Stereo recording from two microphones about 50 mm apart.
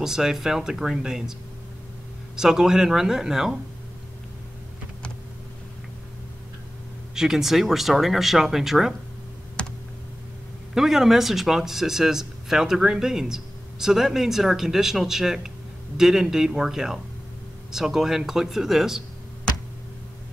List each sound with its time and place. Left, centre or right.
0.0 s speech: centre
2.3 s speech: centre
7.2 s speech: centre
9.6 s computer keyboard: centre
10.7 s speech: centre